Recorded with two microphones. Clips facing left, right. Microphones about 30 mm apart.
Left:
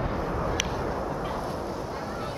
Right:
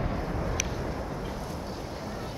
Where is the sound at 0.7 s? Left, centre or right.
Left.